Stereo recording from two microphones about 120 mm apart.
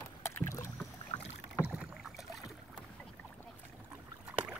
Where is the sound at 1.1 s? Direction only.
60° left (ahead or behind).